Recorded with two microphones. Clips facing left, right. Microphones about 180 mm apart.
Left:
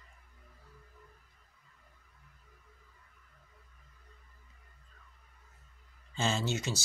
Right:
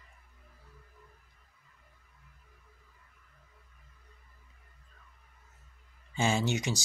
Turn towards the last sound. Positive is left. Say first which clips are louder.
# right 3 dB
turn(degrees=-15)  # may be behind; listen again after turning